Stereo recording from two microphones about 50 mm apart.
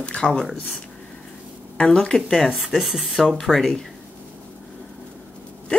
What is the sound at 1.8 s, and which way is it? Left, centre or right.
Speech, centre.